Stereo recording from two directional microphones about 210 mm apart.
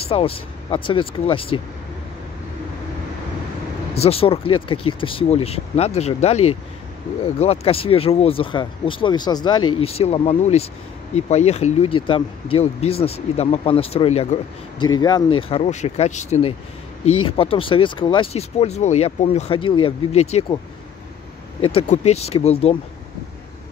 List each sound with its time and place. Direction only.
0.0 s speech: 25° left (ahead or behind)
3.9 s speech: 30° left (ahead or behind)
15.0 s speech: 20° left (ahead or behind)
21.5 s speech: 25° left (ahead or behind)